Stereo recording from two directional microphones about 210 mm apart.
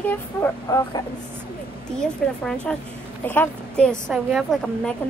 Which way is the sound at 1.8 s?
5° left (ahead or behind).